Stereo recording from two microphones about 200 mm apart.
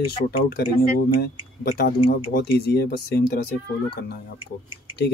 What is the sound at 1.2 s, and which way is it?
Speech, 50° left (ahead or behind).